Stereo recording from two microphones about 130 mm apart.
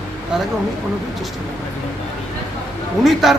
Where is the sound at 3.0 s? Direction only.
Centre (ahead or behind).